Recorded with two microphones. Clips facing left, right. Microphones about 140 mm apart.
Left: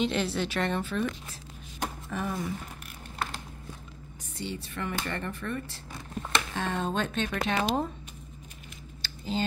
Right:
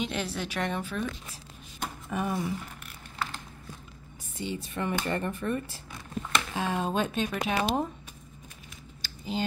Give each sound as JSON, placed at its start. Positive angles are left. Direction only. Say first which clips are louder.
{"t": 0.0, "sound": "speech", "louder": "left 4 dB", "side_deg": -10}
{"t": 2.0, "sound": "speech", "louder": "right 4 dB", "side_deg": -15}
{"t": 4.4, "sound": "speech", "louder": "right 2 dB", "side_deg": -15}
{"t": 9.0, "sound": "a sound", "louder": "left 1 dB", "side_deg": -10}